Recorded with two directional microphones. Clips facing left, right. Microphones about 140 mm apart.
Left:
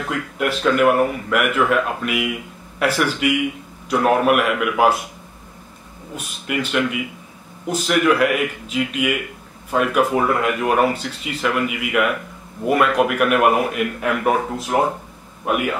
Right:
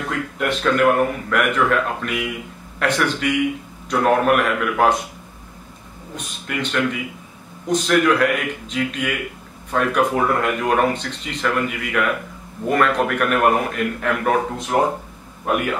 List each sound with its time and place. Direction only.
0.4 s speech: 5° left (ahead or behind)
6.1 s a man's voice: 5° left (ahead or behind)